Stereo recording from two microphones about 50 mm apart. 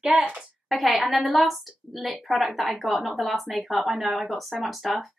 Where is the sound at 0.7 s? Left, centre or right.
Centre.